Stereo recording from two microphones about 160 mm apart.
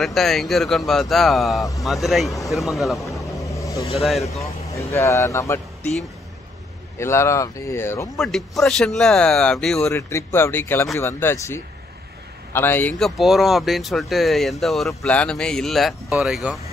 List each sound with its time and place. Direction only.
0.0 s speech: centre (ahead or behind)
3.4 s vehicle: 20° left (ahead or behind)
3.9 s speech: centre (ahead or behind)
4.7 s speech: 20° left (ahead or behind)
7.0 s speech: 15° left (ahead or behind)
8.2 s speech: centre (ahead or behind)
9.9 s speech: 15° left (ahead or behind)
13.0 s speech: centre (ahead or behind)